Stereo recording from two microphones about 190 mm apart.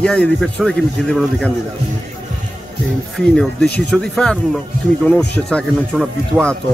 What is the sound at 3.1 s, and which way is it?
Speech, 5° left (ahead or behind).